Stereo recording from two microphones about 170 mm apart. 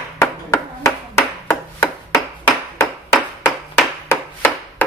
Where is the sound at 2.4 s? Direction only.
10° left (ahead or behind).